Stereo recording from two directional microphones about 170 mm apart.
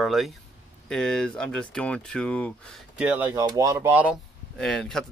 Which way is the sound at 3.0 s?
10° right (ahead or behind).